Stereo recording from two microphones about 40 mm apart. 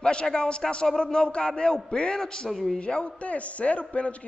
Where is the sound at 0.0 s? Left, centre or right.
Left.